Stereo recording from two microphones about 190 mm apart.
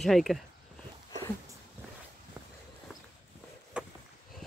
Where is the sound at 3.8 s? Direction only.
5° right (ahead or behind).